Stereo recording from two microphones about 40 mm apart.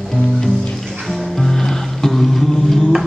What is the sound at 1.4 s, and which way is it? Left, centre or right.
Music, centre.